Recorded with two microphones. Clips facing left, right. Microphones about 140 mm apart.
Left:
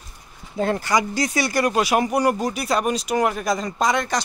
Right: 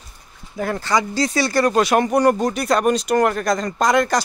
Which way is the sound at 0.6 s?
20° left (ahead or behind).